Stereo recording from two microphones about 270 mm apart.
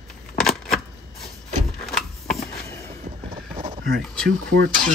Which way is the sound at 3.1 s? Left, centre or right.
Centre.